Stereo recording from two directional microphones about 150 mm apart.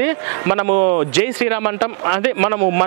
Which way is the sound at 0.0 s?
15° right (ahead or behind).